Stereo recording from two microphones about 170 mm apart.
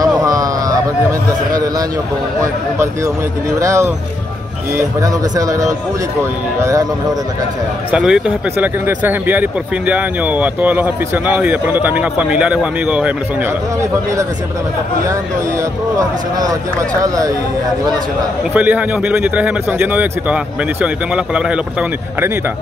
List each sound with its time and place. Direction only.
0.0 s a sound: 20° right (ahead or behind)
1.5 s a man's voice: 20° right (ahead or behind)
7.9 s speech: 5° right (ahead or behind)
16.0 s speech: 20° right (ahead or behind)
18.5 s speech: 10° right (ahead or behind)